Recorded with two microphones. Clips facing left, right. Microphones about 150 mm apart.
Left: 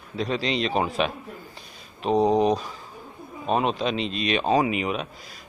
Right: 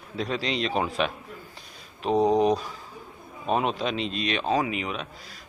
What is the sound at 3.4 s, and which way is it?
Speech, 5° right (ahead or behind).